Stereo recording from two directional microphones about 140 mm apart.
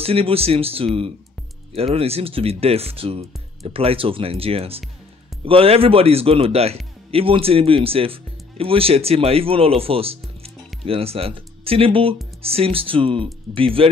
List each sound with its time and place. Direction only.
0.0 s speech: 45° right (ahead or behind)